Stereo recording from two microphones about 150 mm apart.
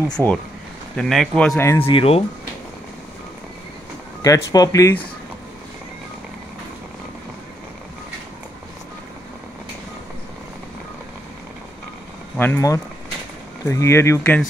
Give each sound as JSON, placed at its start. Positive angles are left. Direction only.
{"t": 0.1, "sound": "speech", "side_deg": 10}
{"t": 1.6, "sound": "speech", "side_deg": 15}
{"t": 1.9, "sound": "speech", "side_deg": 40}
{"t": 4.2, "sound": "speech", "side_deg": 25}
{"t": 12.4, "sound": "speech", "side_deg": 15}